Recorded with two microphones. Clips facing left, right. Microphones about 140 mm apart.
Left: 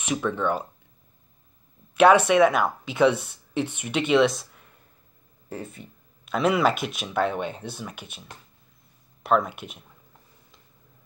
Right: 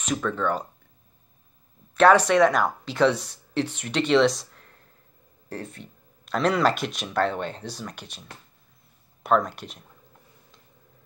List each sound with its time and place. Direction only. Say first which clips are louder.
0.0 s speech: even; 10° left (ahead or behind)
2.0 s speech: left 1 dB; 10° left (ahead or behind)
5.5 s speech: even; 5° left (ahead or behind)